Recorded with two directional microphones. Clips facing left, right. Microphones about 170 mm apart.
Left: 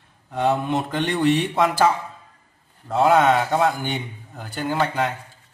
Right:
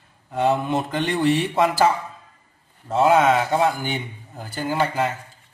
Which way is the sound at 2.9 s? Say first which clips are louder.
Even; centre (ahead or behind).